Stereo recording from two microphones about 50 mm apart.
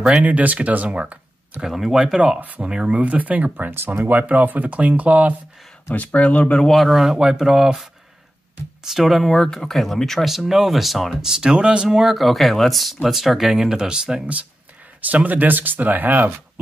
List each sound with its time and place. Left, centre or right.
0.2 s speech: right
1.6 s speech: centre
2.4 s speech: right
5.9 s speech: left
6.7 s speech: centre
7.1 s speech: centre
8.8 s speech: centre
10.2 s speech: centre
11.1 s speech: centre
15.0 s speech: right